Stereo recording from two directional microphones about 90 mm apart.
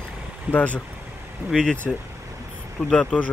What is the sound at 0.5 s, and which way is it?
Speech, 15° left (ahead or behind).